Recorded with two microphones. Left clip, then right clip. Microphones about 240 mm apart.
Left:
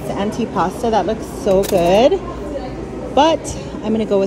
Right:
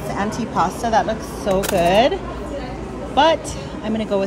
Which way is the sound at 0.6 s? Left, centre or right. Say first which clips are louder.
Even; right.